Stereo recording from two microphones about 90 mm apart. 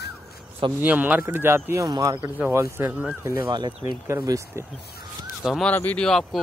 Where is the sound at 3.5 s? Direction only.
55° right (ahead or behind).